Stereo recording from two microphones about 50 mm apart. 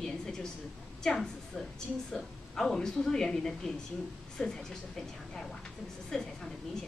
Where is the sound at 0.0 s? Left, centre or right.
Centre.